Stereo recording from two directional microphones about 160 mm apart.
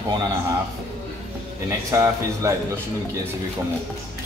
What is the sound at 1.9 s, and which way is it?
Speech, 20° right (ahead or behind).